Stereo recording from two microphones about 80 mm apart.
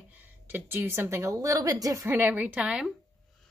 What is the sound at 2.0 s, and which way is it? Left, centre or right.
Speech, right.